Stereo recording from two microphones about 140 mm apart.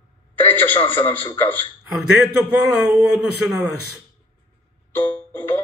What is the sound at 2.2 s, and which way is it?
A man's voice, centre (ahead or behind).